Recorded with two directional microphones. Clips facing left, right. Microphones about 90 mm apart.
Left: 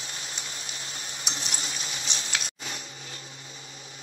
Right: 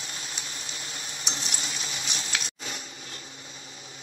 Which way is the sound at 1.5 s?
35° left (ahead or behind).